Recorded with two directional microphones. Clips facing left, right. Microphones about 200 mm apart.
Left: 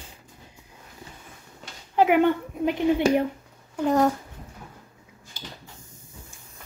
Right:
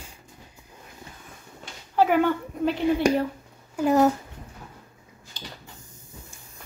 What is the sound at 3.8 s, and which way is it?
Speech, 5° right (ahead or behind).